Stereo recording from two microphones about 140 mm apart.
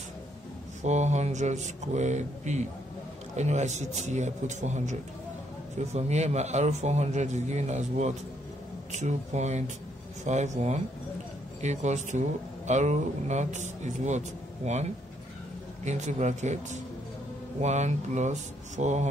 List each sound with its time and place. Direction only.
0.8 s speech: 55° right (ahead or behind)
5.9 s a man's voice: 50° right (ahead or behind)
11.6 s speech: 55° right (ahead or behind)